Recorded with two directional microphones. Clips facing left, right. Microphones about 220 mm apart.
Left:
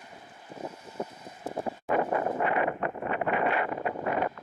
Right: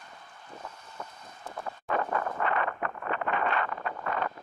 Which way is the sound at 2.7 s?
25° left (ahead or behind).